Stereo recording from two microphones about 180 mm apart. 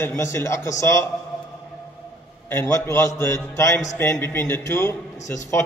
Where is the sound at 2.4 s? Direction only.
10° left (ahead or behind).